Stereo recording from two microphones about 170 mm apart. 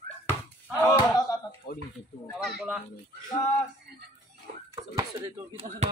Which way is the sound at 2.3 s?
5° right (ahead or behind).